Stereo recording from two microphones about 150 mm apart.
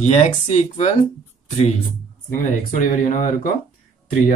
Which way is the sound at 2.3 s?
60° left (ahead or behind).